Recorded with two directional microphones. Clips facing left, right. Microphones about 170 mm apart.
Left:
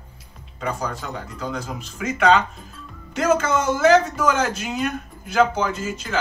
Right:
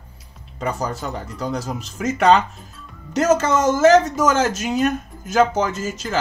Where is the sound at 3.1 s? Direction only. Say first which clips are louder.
Right 3 dB; 40° right (ahead or behind).